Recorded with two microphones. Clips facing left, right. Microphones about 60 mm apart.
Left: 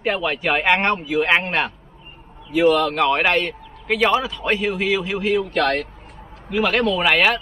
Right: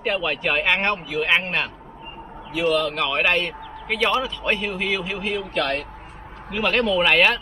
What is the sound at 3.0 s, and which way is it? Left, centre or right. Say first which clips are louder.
Speech: left 4 dB; centre.